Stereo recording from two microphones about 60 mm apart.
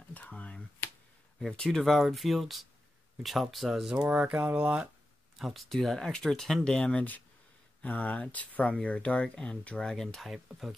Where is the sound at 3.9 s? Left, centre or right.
Centre.